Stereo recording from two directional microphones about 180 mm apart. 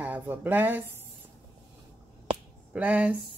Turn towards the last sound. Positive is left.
turn(degrees=-10)  # may be behind; listen again after turning